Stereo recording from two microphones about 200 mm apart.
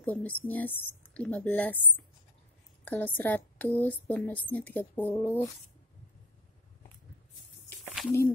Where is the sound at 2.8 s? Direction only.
10° left (ahead or behind).